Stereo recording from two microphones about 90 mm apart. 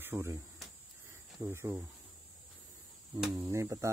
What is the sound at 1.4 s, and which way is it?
Speech, 30° right (ahead or behind).